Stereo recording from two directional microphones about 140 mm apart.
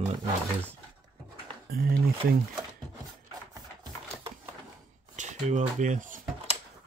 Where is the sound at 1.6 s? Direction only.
90° right.